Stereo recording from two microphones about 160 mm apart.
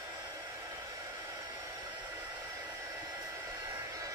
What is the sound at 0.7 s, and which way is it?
Hair dryer, 20° right (ahead or behind).